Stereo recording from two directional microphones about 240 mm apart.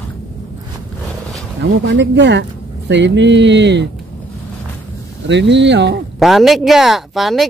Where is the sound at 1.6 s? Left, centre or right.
Right.